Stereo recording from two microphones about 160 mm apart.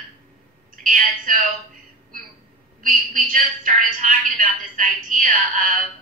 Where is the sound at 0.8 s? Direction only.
60° right (ahead or behind).